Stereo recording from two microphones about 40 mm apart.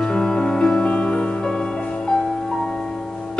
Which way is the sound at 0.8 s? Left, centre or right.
Left.